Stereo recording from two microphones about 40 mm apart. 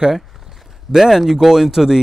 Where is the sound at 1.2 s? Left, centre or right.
Centre.